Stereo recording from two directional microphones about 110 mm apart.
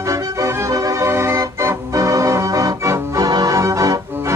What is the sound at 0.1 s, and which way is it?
Organ, 30° right (ahead or behind).